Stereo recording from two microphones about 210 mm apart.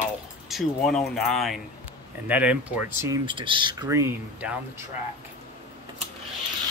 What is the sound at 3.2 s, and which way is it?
Speech, 25° right (ahead or behind).